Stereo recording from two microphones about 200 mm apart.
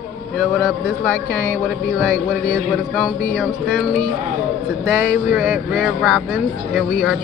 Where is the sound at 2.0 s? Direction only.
5° left (ahead or behind).